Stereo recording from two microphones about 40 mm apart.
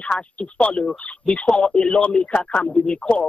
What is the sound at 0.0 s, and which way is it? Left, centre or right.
A man's voice, left.